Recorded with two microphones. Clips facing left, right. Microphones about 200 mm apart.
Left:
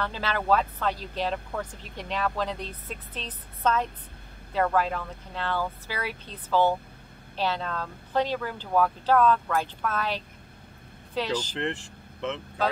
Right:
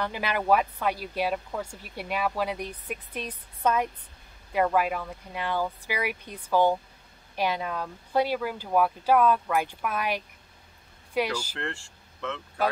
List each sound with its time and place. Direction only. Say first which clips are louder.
0.0 s speech: right 1 dB; 15° right (ahead or behind)
11.5 s speech: left 5 dB; 20° left (ahead or behind)